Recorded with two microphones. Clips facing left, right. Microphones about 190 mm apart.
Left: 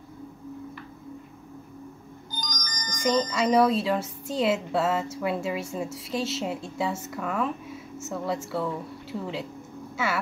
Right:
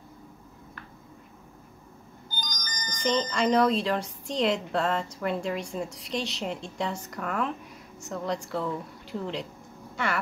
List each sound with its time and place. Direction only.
2.4 s music: 25° right (ahead or behind)
3.1 s speech: centre (ahead or behind)